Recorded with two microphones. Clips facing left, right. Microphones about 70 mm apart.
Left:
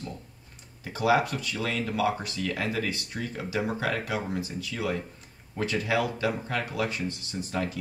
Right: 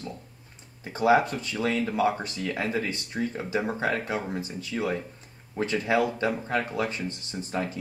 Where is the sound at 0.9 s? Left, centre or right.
Right.